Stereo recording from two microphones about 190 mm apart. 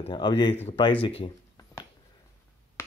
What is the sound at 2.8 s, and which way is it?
Finger snapping, 15° left (ahead or behind).